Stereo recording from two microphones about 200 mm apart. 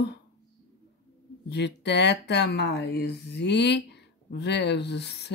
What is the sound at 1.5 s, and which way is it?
Speech, 60° left (ahead or behind).